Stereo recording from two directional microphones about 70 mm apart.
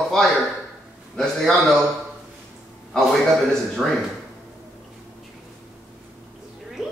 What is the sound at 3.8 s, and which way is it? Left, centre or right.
Speech, centre.